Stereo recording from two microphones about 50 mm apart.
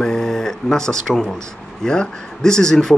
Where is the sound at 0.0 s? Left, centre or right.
Centre.